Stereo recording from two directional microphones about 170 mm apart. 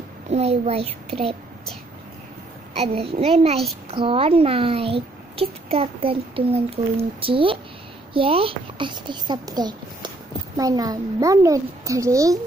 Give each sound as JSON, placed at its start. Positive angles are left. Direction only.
{"t": 0.3, "sound": "speech", "side_deg": -35}
{"t": 2.8, "sound": "a child's voice", "side_deg": -35}